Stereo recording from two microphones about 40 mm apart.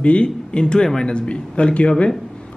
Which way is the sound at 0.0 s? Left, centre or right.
Left.